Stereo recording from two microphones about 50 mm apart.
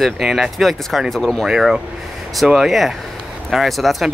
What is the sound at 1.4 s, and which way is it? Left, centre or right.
Speech, centre.